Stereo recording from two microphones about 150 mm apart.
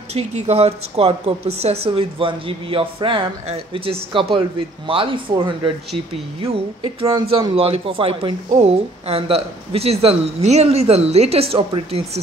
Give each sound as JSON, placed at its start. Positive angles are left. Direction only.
{"t": 0.1, "sound": "a man's voice", "side_deg": -45}